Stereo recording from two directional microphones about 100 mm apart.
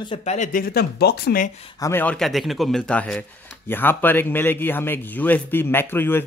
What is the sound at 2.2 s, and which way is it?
Speech, centre (ahead or behind).